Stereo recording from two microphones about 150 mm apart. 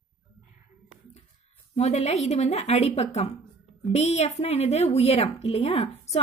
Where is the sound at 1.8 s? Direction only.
45° left (ahead or behind).